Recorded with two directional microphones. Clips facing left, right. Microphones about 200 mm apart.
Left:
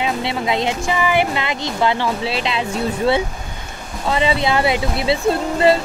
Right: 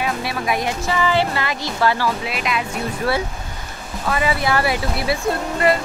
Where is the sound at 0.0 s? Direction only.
25° left (ahead or behind).